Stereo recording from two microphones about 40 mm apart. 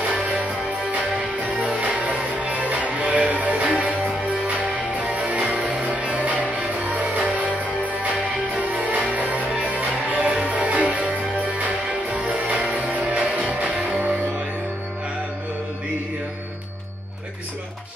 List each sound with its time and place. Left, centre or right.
0.0 s music: right